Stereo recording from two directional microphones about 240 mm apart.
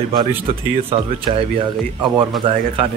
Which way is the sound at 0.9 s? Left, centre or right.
Right.